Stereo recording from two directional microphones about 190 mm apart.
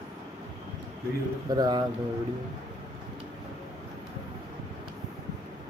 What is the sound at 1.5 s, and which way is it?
Speech, 20° right (ahead or behind).